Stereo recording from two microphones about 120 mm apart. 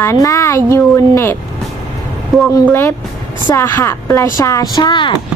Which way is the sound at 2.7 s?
20° left (ahead or behind).